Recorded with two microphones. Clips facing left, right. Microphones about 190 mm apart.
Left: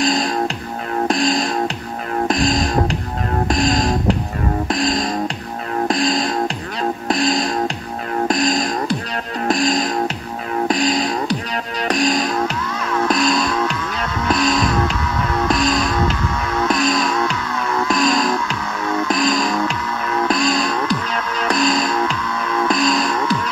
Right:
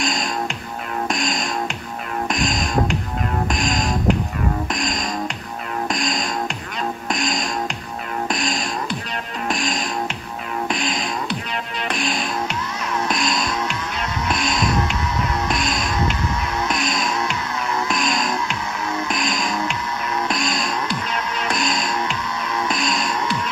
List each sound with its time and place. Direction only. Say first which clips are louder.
0.0 s music: left 6 dB; 35° left (ahead or behind)